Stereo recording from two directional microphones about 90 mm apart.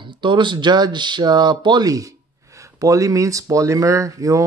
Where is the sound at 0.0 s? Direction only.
60° right (ahead or behind).